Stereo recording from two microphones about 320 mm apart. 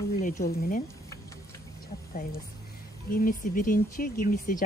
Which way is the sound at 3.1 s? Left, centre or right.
Left.